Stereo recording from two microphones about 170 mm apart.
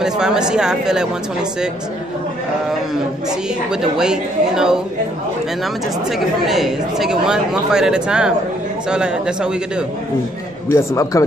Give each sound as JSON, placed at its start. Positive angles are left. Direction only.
{"t": 0.0, "sound": "speech", "side_deg": -5}
{"t": 3.3, "sound": "speech", "side_deg": -5}
{"t": 6.1, "sound": "speech", "side_deg": 0}
{"t": 10.7, "sound": "speech", "side_deg": 20}